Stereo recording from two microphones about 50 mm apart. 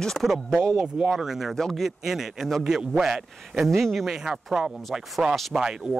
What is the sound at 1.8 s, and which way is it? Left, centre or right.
A man's voice, centre.